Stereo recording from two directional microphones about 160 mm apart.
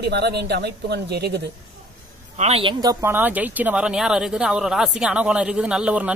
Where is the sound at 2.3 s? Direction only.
45° right (ahead or behind).